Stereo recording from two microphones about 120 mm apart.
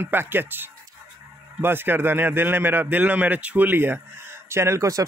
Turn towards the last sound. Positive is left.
turn(degrees=-25)  # may be behind; listen again after turning